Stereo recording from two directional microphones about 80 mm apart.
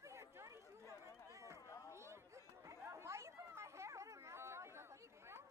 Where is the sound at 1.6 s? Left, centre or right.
Left.